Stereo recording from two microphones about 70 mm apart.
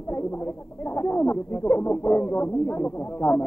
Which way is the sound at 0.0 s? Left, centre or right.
Left.